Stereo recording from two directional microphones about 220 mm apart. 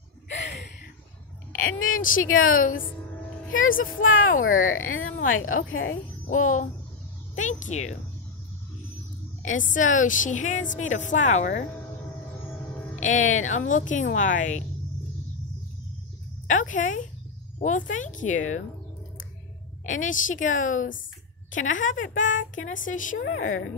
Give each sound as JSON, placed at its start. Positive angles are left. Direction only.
{"t": 0.3, "sound": "a sound", "side_deg": 50}
{"t": 1.6, "sound": "a woman's voice", "side_deg": 65}
{"t": 2.5, "sound": "speech", "side_deg": 40}
{"t": 3.8, "sound": "a woman's voice", "side_deg": 65}
{"t": 6.2, "sound": "child singing", "side_deg": 35}
{"t": 7.3, "sound": "speech", "side_deg": 35}
{"t": 9.7, "sound": "speech", "side_deg": 35}
{"t": 13.0, "sound": "speech", "side_deg": 35}
{"t": 16.4, "sound": "speech", "side_deg": 35}
{"t": 19.9, "sound": "speech", "side_deg": 35}
{"t": 22.3, "sound": "speech", "side_deg": 60}
{"t": 22.7, "sound": "speech", "side_deg": 35}
{"t": 23.1, "sound": "speech", "side_deg": 60}